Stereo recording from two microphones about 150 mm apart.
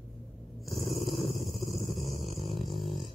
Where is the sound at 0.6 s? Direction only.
Centre (ahead or behind).